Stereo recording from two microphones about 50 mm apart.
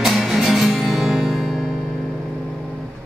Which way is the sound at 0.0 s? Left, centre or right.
Centre.